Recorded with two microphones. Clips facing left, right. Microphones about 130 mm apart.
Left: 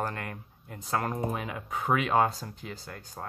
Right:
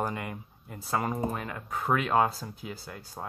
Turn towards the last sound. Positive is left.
turn(degrees=-5)  # may be behind; listen again after turning